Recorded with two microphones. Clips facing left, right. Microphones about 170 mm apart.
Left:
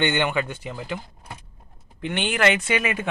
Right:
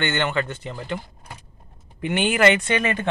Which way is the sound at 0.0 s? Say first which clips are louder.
Left 1 dB; 15° left (ahead or behind).